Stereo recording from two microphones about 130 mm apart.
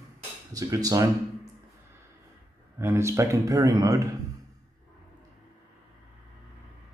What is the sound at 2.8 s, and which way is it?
Speech, 20° right (ahead or behind).